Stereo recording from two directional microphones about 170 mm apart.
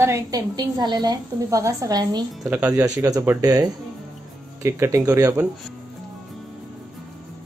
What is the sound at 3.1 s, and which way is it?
A woman's voice, 20° right (ahead or behind).